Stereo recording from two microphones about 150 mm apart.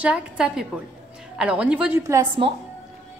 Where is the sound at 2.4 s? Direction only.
35° right (ahead or behind).